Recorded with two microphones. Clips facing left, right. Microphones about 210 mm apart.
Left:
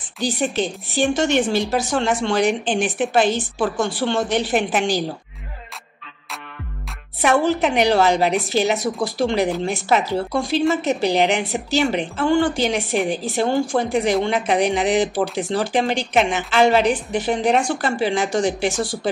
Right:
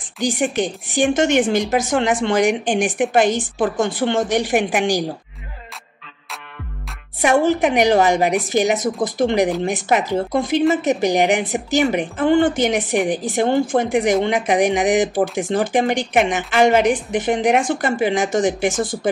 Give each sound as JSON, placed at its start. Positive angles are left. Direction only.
{"t": 0.2, "sound": "a woman's voice", "side_deg": -15}
{"t": 7.2, "sound": "a woman's voice", "side_deg": -15}